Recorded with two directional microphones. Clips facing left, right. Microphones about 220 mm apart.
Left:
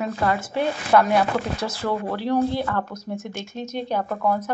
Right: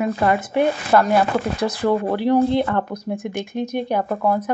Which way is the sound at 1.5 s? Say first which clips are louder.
Right 6 dB; 15° right (ahead or behind).